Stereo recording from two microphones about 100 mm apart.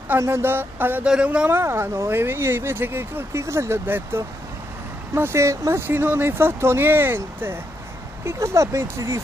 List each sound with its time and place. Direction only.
0.2 s speech: 25° right (ahead or behind)
1.0 s a man's voice: 10° right (ahead or behind)
1.5 s speech: 25° right (ahead or behind)